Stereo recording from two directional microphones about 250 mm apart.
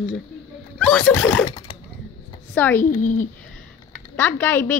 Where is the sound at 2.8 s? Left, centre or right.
Left.